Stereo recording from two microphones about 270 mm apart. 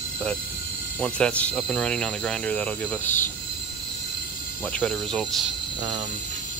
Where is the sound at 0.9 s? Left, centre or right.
Centre.